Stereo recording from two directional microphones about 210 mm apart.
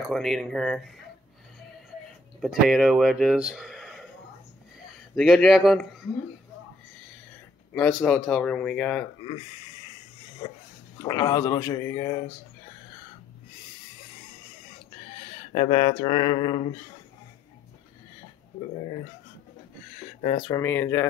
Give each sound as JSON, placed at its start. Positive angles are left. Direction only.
{"t": 0.0, "sound": "speech", "side_deg": 0}
{"t": 2.4, "sound": "speech", "side_deg": 0}
{"t": 5.1, "sound": "speech", "side_deg": 0}
{"t": 7.7, "sound": "speech", "side_deg": 5}
{"t": 10.4, "sound": "a sound", "side_deg": 25}
{"t": 11.0, "sound": "speech", "side_deg": 20}
{"t": 15.5, "sound": "a sound", "side_deg": 30}
{"t": 20.2, "sound": "speech", "side_deg": 30}
{"t": 20.4, "sound": "speech", "side_deg": 15}